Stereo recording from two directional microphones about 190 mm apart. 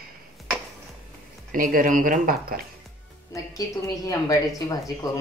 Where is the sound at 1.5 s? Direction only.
45° right (ahead or behind).